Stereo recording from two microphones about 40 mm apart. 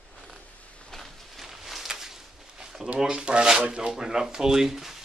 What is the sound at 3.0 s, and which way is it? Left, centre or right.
Speech, right.